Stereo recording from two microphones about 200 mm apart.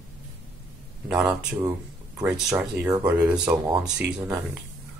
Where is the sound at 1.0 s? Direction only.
5° right (ahead or behind).